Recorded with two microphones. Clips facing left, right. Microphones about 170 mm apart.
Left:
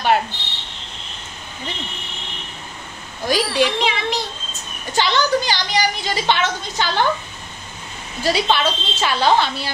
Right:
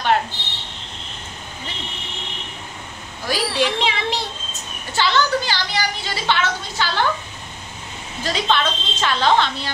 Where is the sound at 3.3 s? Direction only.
15° left (ahead or behind).